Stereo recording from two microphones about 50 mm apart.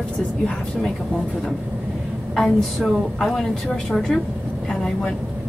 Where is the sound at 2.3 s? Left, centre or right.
Centre.